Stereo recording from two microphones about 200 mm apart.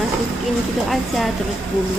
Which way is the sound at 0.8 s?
Centre (ahead or behind).